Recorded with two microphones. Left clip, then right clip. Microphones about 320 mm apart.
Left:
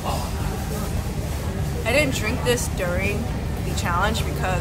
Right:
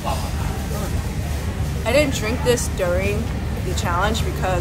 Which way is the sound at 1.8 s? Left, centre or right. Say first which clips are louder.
Right 3 dB; centre.